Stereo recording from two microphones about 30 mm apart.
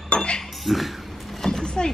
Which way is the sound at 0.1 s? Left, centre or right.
Left.